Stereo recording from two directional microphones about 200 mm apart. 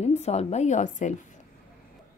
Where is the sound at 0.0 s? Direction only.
35° left (ahead or behind).